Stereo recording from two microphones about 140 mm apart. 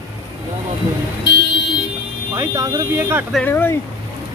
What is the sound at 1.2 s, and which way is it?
Vehicle, 30° left (ahead or behind).